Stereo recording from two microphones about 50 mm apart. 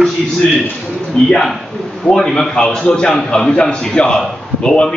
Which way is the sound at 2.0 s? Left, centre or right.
Centre.